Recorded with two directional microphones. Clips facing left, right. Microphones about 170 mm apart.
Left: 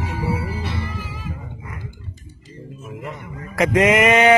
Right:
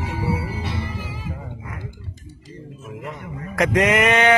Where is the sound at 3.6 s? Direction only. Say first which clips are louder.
Left 2 dB; centre (ahead or behind).